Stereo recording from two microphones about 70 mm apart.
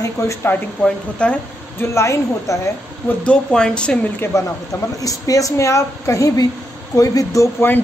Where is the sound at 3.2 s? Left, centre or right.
Centre.